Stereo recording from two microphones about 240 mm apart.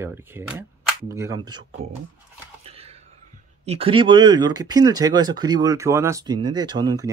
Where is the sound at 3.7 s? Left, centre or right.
Right.